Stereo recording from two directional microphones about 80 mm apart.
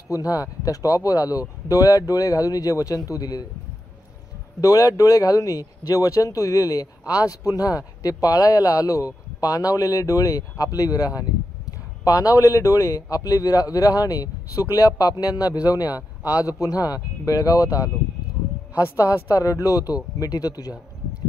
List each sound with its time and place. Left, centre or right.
0.1 s speech: left
4.6 s speech: left